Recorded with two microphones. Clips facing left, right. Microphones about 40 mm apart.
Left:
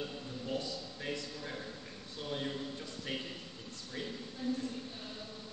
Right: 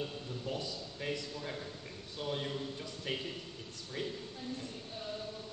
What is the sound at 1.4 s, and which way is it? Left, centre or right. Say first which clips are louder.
A man's voice: right 1 dB; centre.